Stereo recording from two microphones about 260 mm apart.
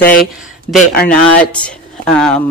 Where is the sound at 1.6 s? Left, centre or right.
Centre.